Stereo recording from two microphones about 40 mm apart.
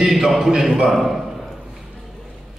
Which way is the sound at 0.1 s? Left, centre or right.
Centre.